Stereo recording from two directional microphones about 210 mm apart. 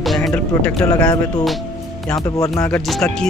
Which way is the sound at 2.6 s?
5° left (ahead or behind).